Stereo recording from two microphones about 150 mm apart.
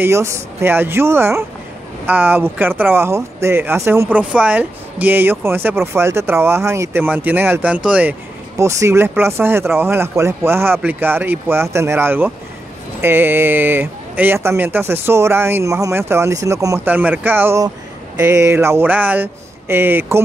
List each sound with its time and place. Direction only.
0.0 s speech: 20° right (ahead or behind)
16.9 s speech: 10° right (ahead or behind)